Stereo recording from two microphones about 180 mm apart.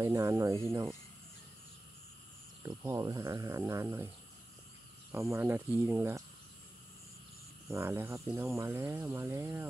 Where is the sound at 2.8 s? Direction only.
15° right (ahead or behind).